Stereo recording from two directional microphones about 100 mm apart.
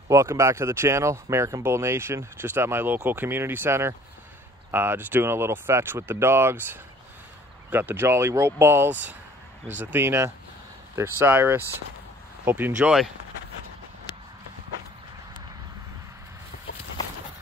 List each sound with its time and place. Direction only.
0.1 s speech: 30° right (ahead or behind)